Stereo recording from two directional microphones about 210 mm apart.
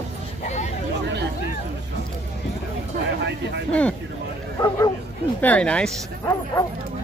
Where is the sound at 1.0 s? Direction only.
55° right (ahead or behind).